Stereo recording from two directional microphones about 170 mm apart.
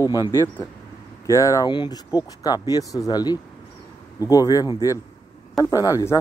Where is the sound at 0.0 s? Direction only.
20° left (ahead or behind).